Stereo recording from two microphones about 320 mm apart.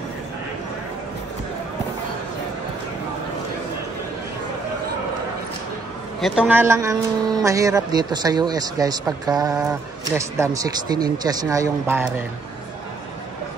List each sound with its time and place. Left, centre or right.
6.2 s speech: centre